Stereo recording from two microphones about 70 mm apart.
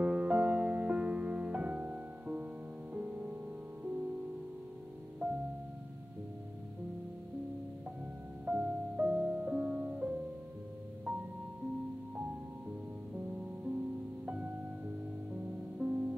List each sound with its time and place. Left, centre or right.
0.0 s music: right
5.2 s music: right
8.5 s music: right
13.1 s music: right
15.8 s music: right